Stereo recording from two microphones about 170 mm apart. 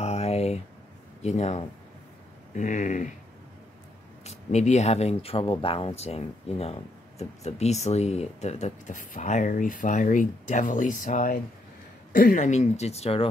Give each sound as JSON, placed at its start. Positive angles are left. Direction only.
{"t": 0.0, "sound": "a sound", "side_deg": 40}
{"t": 1.2, "sound": "speech", "side_deg": 45}
{"t": 4.2, "sound": "a woman's voice", "side_deg": 40}
{"t": 12.4, "sound": "speech", "side_deg": 40}